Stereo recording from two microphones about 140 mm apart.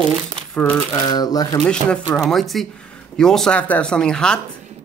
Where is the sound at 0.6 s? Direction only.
10° left (ahead or behind).